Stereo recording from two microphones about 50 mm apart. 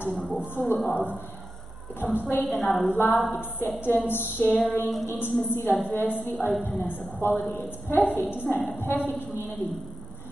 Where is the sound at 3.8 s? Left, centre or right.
Left.